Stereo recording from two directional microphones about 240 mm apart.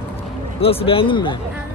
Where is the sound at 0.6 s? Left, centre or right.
Left.